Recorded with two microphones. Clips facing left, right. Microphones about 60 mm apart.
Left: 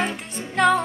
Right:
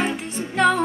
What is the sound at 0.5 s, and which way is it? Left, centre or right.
Music, centre.